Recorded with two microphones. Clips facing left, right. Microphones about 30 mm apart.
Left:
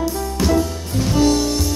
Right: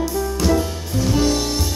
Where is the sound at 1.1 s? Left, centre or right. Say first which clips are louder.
Left 4 dB; centre.